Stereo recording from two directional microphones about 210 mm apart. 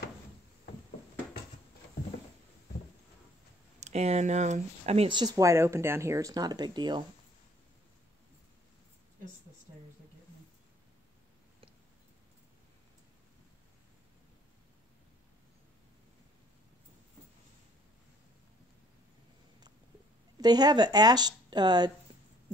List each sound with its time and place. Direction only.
3.8 s speech: 30° right (ahead or behind)
20.3 s speech: 20° right (ahead or behind)